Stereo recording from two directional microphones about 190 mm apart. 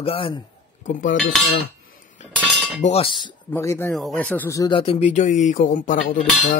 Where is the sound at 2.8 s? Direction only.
30° left (ahead or behind).